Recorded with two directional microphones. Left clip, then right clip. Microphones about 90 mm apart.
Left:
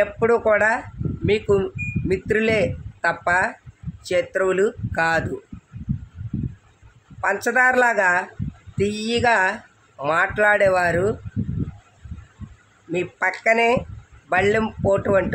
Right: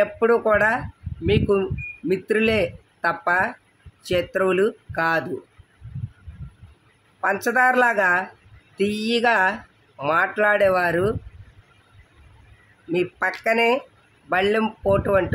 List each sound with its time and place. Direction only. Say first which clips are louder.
0.0 s a man's voice: even; 5° right (ahead or behind)
7.2 s speech: left 1 dB; 5° right (ahead or behind)
12.9 s speech: even; centre (ahead or behind)